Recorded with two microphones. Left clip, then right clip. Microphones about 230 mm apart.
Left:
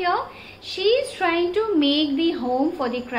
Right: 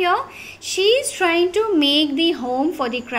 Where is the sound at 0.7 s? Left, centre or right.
Right.